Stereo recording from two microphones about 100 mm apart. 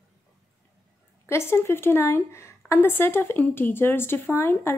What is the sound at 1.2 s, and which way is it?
Speech, 25° left (ahead or behind).